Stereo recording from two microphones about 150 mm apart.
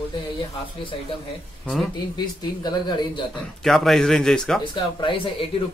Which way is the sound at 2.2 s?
30° left (ahead or behind).